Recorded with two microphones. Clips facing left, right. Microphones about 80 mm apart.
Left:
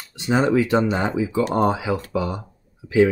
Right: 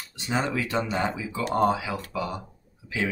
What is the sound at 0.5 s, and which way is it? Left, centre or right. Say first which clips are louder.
Speech: left 9 dB; left.